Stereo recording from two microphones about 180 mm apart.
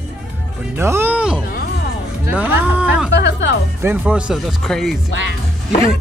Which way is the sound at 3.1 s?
75° left (ahead or behind).